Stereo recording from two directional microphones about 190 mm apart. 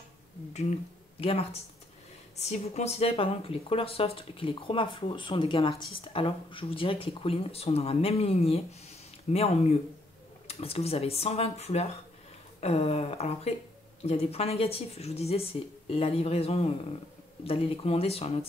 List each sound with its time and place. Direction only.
1.2 s speech: 30° left (ahead or behind)